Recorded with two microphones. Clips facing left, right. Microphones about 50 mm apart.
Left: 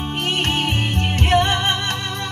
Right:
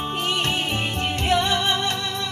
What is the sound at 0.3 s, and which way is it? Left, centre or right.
Music, left.